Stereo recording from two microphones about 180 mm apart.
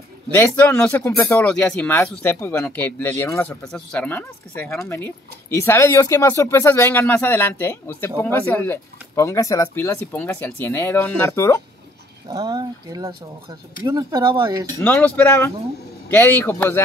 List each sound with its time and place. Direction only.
0.4 s speech: 10° left (ahead or behind)
1.4 s speech: 5° left (ahead or behind)
12.3 s speech: 20° right (ahead or behind)
14.8 s speech: 10° left (ahead or behind)